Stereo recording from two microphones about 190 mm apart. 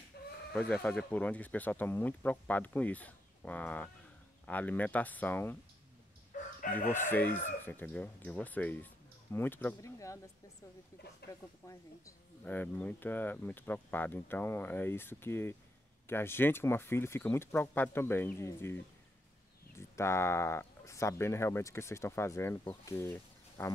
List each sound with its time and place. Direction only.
0.2 s sheep: 55° left (ahead or behind)
0.5 s speech: 5° left (ahead or behind)
6.3 s chicken: 40° left (ahead or behind)
6.9 s speech: 10° left (ahead or behind)
11.2 s speech: 60° left (ahead or behind)
11.6 s speech: 15° left (ahead or behind)
20.0 s speech: 15° left (ahead or behind)